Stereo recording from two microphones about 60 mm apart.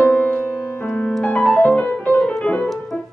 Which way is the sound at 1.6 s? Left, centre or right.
Left.